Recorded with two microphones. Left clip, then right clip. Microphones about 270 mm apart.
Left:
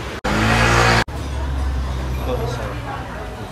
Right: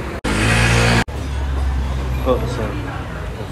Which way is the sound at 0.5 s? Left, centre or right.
Left.